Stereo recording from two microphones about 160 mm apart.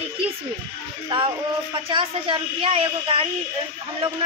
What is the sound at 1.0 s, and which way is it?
A woman's voice, 30° right (ahead or behind).